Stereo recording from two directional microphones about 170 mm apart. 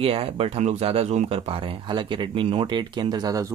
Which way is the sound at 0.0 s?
35° right (ahead or behind).